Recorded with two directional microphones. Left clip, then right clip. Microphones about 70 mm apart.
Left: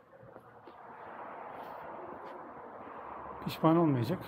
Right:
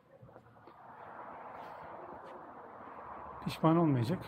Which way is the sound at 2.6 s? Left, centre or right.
Centre.